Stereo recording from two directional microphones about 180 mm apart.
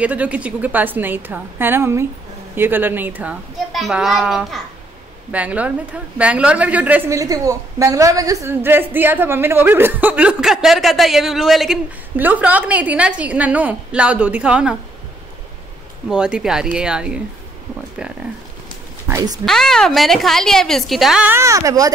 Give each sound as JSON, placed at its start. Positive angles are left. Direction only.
{"t": 0.0, "sound": "a woman's voice", "side_deg": -10}
{"t": 16.1, "sound": "a woman's voice", "side_deg": -5}
{"t": 19.0, "sound": "speech", "side_deg": -20}
{"t": 19.4, "sound": "a woman's voice", "side_deg": 5}